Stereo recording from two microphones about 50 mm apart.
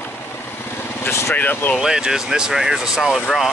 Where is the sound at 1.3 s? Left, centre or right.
Left.